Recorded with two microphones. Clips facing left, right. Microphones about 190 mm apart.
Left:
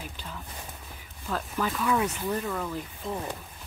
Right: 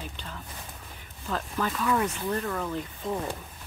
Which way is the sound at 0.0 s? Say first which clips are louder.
Even; 10° left (ahead or behind).